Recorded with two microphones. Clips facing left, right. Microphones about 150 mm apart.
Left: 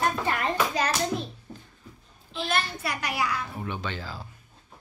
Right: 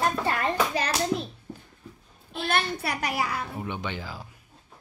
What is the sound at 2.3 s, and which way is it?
A woman's voice, 55° right (ahead or behind).